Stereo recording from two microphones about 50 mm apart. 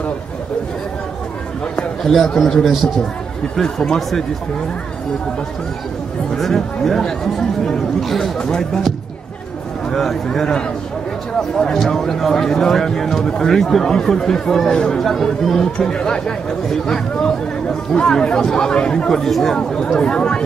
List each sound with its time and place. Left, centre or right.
2.0 s speech: centre
2.6 s speech: centre
3.5 s speech: centre
6.3 s speech: centre
8.4 s speech: centre
9.8 s speech: centre
15.0 s speech: centre
19.7 s speech: centre